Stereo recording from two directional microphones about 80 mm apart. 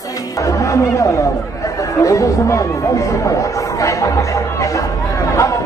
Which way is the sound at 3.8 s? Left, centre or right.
Left.